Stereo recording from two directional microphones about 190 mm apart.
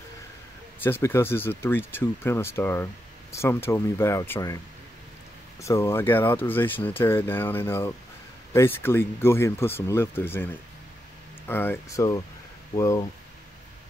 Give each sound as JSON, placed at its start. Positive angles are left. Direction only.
{"t": 0.8, "sound": "speech", "side_deg": 10}
{"t": 5.6, "sound": "speech", "side_deg": 15}